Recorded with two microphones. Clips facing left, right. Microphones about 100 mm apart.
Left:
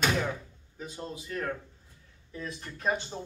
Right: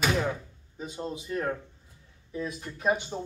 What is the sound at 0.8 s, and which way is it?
A man's voice, 20° right (ahead or behind).